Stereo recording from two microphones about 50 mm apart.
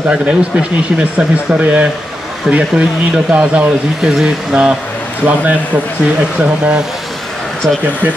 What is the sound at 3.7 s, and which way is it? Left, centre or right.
Speech, centre.